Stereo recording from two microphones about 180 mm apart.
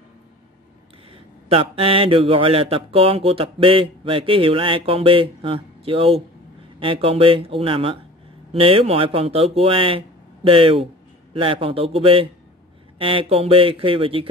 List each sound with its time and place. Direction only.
1.1 s speech: 30° right (ahead or behind)